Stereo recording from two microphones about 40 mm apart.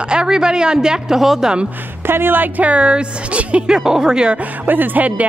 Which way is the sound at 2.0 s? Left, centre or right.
Right.